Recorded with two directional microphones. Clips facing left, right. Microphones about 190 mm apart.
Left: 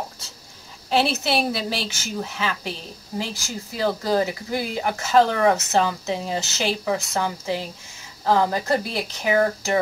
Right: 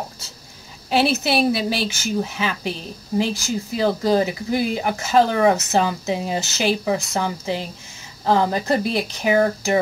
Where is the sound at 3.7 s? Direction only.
20° right (ahead or behind).